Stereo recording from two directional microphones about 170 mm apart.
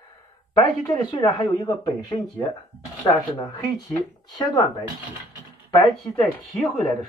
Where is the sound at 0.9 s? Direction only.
25° left (ahead or behind).